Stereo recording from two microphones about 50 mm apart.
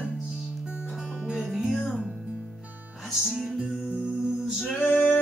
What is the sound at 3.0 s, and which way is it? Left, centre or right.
Music, centre.